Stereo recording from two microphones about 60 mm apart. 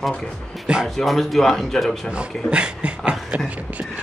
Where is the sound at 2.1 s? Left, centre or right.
Centre.